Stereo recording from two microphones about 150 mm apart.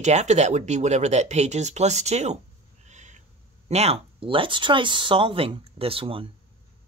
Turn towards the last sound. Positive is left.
turn(degrees=-40)  # may be behind; listen again after turning